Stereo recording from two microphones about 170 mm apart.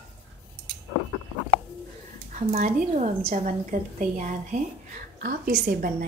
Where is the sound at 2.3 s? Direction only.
45° right (ahead or behind).